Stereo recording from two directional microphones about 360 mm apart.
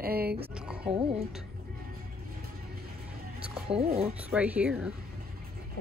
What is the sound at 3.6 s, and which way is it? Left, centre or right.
Speech, centre.